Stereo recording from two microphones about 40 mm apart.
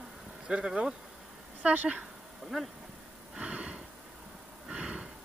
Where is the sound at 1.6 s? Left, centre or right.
Right.